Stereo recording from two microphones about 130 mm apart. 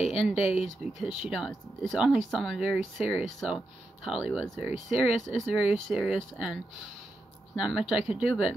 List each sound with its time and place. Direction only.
0.0 s speech: 55° left (ahead or behind)
0.9 s speech: 5° right (ahead or behind)
4.2 s speech: 10° left (ahead or behind)
4.8 s speech: 5° right (ahead or behind)